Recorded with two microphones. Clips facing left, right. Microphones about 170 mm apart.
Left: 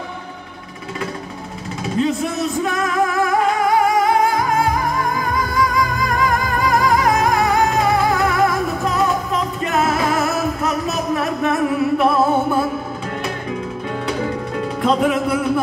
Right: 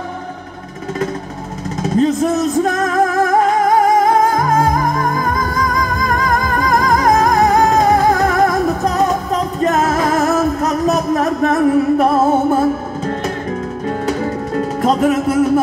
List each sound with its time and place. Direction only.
1.8 s music: 40° right (ahead or behind)
14.0 s music: 40° right (ahead or behind)